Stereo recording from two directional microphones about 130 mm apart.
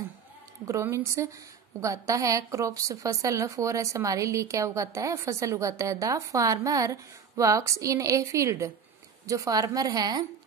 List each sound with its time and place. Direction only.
0.7 s speech: 20° right (ahead or behind)